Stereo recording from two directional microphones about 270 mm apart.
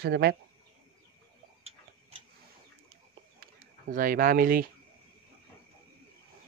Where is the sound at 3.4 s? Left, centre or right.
Right.